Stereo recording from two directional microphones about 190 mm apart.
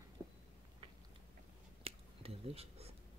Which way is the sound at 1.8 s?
30° right (ahead or behind).